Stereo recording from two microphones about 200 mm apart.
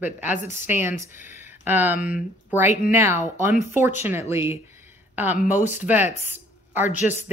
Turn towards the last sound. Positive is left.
turn(degrees=-10)  # may be behind; listen again after turning